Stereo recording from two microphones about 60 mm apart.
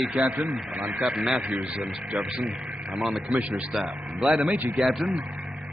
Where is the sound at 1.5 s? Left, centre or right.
Right.